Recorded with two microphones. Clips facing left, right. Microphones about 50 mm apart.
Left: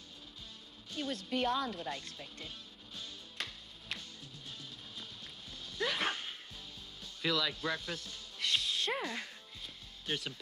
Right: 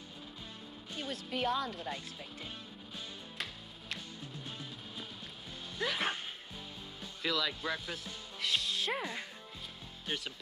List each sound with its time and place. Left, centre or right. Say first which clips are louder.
0.9 s speech: left 2 dB; centre
4.2 s music: right 5 dB; right
5.8 s music: even; centre
7.2 s speech: left 1 dB; centre
10.0 s speech: left 1 dB; centre